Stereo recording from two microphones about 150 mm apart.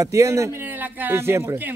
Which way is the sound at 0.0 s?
20° right (ahead or behind).